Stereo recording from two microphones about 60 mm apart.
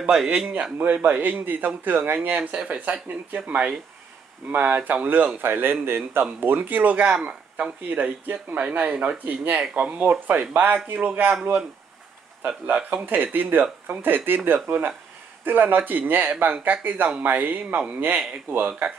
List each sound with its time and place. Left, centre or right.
0.0 s a man's voice: centre
1.2 s speech: right
2.1 s speech: right
5.4 s speech: right
9.6 s a man's voice: centre
9.9 s speech: right
12.6 s speech: right